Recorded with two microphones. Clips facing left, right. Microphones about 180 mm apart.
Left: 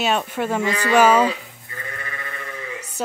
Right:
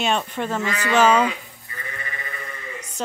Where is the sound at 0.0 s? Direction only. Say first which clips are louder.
Left 2 dB; 5° left (ahead or behind).